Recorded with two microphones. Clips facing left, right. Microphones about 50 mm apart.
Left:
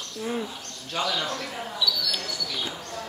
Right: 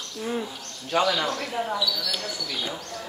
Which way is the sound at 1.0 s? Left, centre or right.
Right.